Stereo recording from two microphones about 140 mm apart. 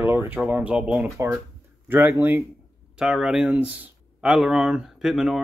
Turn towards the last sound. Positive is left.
turn(degrees=-5)  # may be behind; listen again after turning